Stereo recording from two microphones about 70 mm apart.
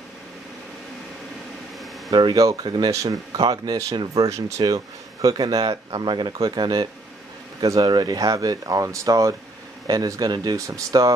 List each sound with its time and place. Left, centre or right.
2.0 s speech: right
2.6 s speech: right
2.9 s speech: right
3.3 s speech: right
4.3 s speech: right
4.6 s speech: right
10.7 s speech: right